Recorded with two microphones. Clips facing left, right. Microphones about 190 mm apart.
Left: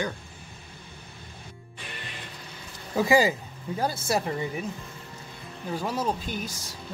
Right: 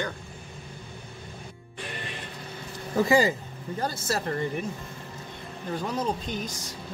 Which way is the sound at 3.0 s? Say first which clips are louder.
Even; 10° left (ahead or behind).